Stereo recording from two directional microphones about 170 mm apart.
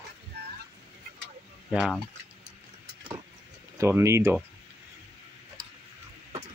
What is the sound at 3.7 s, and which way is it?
Speech, 15° right (ahead or behind).